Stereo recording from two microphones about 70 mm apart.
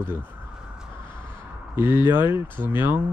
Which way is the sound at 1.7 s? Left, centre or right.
Right.